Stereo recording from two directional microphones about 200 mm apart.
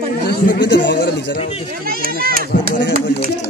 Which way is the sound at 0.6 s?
60° left (ahead or behind).